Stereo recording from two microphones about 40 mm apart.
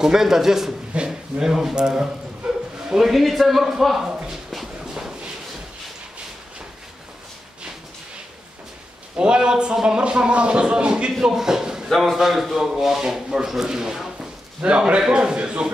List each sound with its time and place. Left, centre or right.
0.0 s a man's voice: centre
1.8 s bow-wow: centre
3.1 s speech: centre
4.0 s a sound: centre
4.5 s dog: centre
9.1 s speech: right
11.1 s a man's voice: centre
12.0 s a man's voice: centre
14.6 s speech: right